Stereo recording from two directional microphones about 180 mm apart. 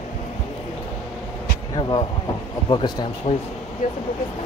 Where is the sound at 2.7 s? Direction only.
25° left (ahead or behind).